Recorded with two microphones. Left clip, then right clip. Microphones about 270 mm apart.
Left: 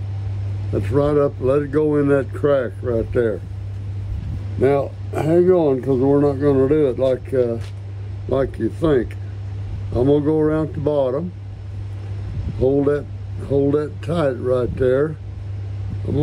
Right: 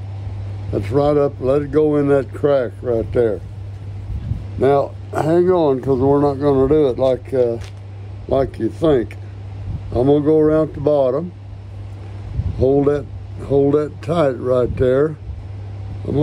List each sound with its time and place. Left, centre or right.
0.7 s speech: centre
4.6 s speech: centre
12.6 s speech: centre